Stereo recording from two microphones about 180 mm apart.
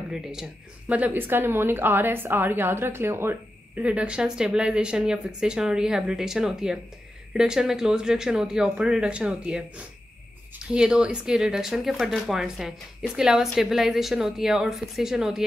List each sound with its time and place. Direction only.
0.1 s speech: 5° right (ahead or behind)